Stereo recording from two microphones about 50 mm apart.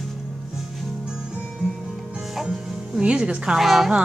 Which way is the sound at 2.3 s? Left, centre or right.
Centre.